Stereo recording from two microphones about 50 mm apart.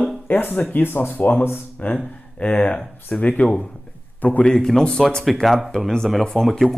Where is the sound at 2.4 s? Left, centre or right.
Left.